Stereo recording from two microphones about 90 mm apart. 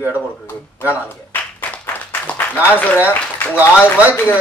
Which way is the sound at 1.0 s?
20° left (ahead or behind).